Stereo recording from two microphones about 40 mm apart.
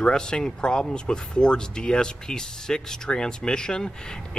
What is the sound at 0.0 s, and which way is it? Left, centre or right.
Speech, centre.